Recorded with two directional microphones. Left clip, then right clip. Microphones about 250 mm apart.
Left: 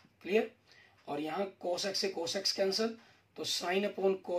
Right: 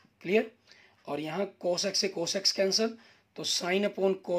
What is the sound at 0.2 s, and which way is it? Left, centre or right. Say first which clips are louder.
Speech: right 4 dB; right.